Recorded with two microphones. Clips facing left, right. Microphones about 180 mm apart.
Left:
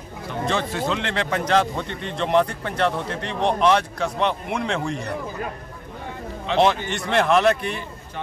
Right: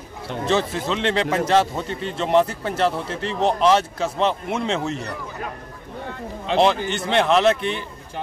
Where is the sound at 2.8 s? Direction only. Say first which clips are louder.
Right 1 dB; 30° right (ahead or behind).